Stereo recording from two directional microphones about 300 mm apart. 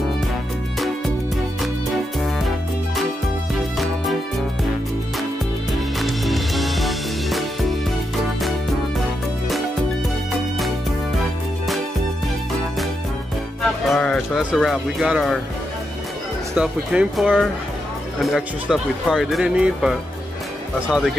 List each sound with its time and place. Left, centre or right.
3.5 s music: centre
5.7 s music: centre
13.8 s speech: centre
16.5 s speech: centre